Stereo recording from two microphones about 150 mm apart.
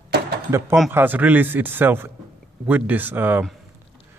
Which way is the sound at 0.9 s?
15° right (ahead or behind).